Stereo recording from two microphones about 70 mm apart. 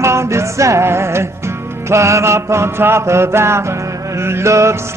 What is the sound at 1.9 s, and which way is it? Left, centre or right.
Mantra, right.